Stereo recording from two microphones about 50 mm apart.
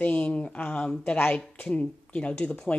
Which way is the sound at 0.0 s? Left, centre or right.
Left.